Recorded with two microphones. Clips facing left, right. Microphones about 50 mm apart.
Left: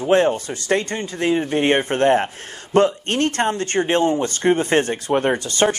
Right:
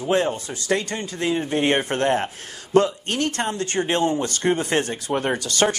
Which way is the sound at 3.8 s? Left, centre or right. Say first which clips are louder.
Left 3 dB; left.